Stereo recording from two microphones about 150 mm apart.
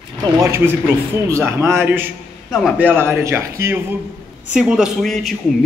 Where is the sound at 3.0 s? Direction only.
15° right (ahead or behind).